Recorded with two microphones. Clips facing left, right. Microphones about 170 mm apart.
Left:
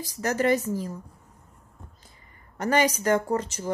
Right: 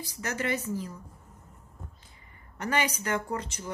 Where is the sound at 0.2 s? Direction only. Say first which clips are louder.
Left 8 dB; 40° left (ahead or behind).